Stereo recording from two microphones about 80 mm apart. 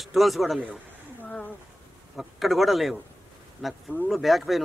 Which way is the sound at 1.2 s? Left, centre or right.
Centre.